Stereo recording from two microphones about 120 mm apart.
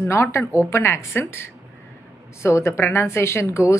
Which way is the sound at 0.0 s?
20° left (ahead or behind).